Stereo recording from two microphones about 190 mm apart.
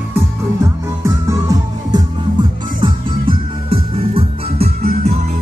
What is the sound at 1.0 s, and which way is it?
Music, 20° right (ahead or behind).